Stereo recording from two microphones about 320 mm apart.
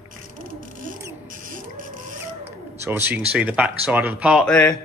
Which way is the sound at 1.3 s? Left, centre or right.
Right.